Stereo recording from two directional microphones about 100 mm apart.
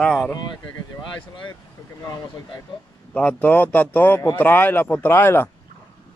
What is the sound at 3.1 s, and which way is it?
Speech, 10° left (ahead or behind).